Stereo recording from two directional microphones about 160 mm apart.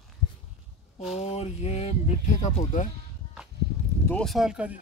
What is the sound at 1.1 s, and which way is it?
Speech, 40° left (ahead or behind).